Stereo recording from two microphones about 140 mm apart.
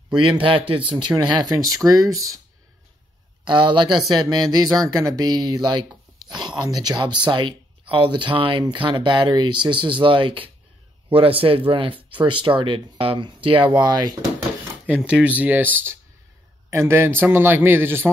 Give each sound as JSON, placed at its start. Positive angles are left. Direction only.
{"t": 0.4, "sound": "speech", "side_deg": -40}
{"t": 3.4, "sound": "speech", "side_deg": -35}
{"t": 14.9, "sound": "a man's voice", "side_deg": -10}